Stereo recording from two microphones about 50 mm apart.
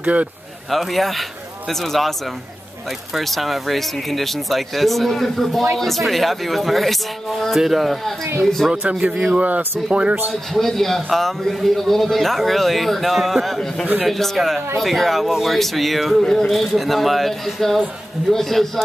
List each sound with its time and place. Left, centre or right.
0.0 s speech: right
0.7 s a man's voice: centre
3.2 s a man's voice: centre
9.1 s a man's voice: centre
10.5 s a man's voice: centre